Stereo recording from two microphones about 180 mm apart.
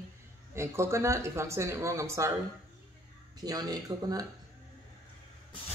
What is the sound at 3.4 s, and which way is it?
Speech, 20° right (ahead or behind).